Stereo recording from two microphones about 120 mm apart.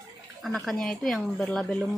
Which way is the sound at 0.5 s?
5° left (ahead or behind).